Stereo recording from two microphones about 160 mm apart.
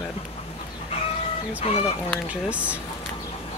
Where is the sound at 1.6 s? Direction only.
40° left (ahead or behind).